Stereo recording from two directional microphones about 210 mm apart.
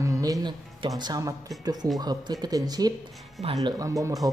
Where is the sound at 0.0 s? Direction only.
15° right (ahead or behind).